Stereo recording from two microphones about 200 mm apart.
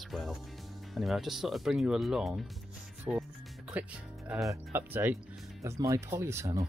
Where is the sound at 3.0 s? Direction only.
5° right (ahead or behind).